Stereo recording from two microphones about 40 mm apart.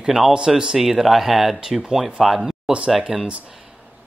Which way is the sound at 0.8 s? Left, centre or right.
Centre.